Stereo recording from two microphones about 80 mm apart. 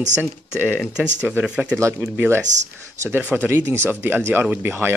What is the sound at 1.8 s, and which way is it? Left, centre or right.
Speech, right.